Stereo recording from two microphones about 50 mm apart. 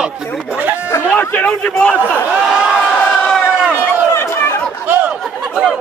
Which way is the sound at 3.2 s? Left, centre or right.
Centre.